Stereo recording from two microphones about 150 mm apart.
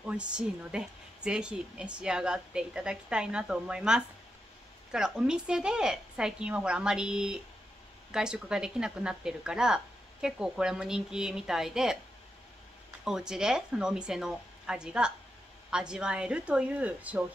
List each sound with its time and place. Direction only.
0.0 s a woman's voice: 5° right (ahead or behind)
13.0 s a woman's voice: 5° right (ahead or behind)